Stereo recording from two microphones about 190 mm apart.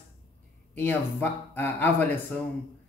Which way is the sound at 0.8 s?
10° left (ahead or behind).